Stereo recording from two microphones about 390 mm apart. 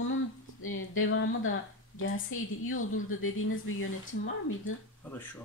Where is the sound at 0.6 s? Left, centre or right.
Left.